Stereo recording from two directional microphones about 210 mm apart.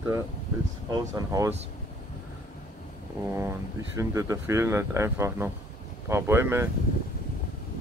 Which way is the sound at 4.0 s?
15° right (ahead or behind).